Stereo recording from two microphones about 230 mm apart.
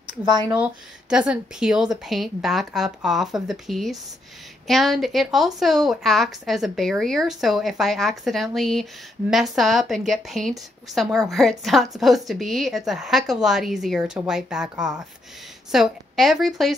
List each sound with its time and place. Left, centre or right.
0.2 s speech: centre
0.6 s a woman's voice: centre